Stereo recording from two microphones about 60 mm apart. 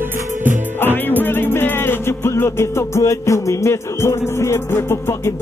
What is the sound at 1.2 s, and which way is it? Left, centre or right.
Music, left.